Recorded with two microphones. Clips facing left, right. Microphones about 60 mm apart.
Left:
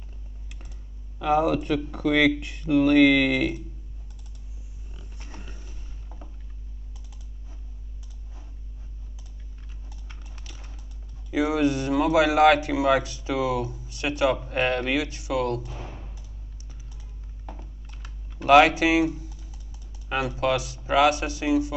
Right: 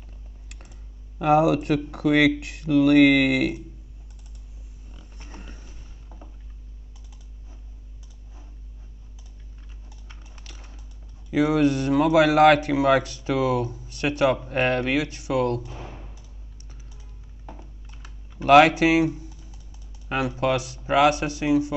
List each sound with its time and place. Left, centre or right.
1.2 s speech: right
5.3 s music: right
5.9 s a sound: centre
11.3 s speech: right
15.6 s a sound: centre
17.8 s typing: centre
18.4 s speech: right
20.3 s speech: right